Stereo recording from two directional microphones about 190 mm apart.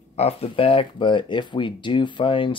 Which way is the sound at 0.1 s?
35° left (ahead or behind).